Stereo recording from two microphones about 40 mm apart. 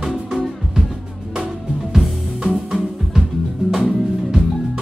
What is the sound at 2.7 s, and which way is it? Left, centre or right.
Music, centre.